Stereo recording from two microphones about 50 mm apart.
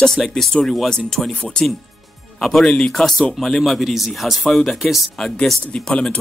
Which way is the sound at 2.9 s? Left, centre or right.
Centre.